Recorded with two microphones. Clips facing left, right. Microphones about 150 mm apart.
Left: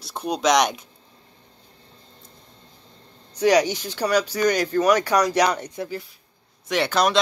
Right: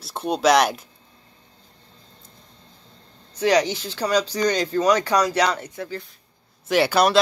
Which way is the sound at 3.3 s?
15° left (ahead or behind).